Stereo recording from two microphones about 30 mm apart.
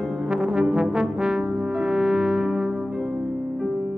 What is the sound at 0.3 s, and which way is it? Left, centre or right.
Brass instrument, right.